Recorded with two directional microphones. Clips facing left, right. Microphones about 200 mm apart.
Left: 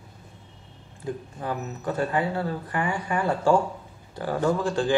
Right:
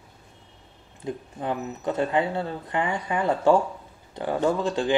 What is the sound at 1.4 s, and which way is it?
Speech, 20° right (ahead or behind).